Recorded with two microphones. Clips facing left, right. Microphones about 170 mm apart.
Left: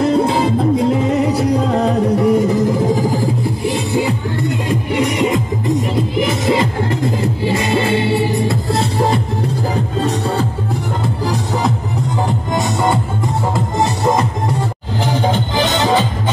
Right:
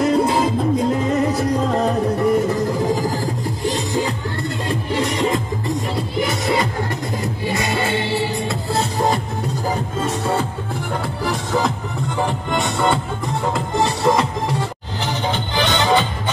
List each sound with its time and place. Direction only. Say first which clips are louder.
0.0 s music: left 2 dB; centre (ahead or behind)
3.0 s music: left 5 dB; 15° left (ahead or behind)
13.7 s music: left 1 dB; 20° left (ahead or behind)
15.3 s music: left 3 dB; 40° left (ahead or behind)